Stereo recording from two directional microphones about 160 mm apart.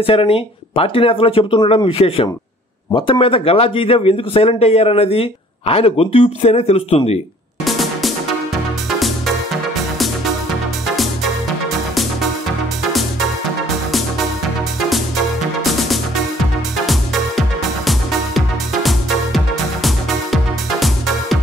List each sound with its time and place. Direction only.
0.0 s a man's voice: 35° left (ahead or behind)
7.6 s music: centre (ahead or behind)
14.9 s music: centre (ahead or behind)